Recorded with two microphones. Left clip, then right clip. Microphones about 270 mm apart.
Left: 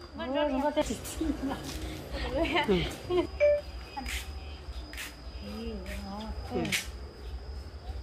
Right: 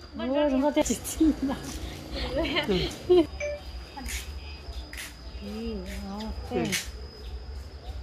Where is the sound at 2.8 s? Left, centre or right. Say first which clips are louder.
Right 8 dB; right.